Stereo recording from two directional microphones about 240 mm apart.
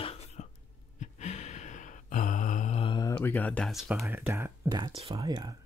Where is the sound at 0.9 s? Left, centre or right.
Left.